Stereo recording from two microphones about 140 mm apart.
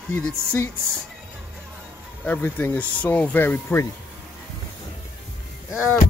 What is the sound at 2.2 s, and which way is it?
Speech, 10° left (ahead or behind).